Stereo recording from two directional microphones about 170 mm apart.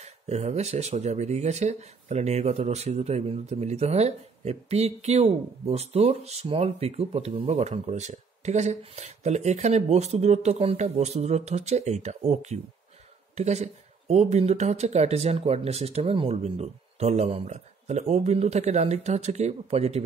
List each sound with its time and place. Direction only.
0.0 s speech: 40° right (ahead or behind)